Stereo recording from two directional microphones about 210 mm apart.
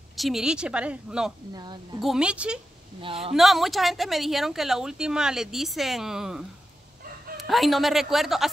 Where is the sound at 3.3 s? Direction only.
Centre (ahead or behind).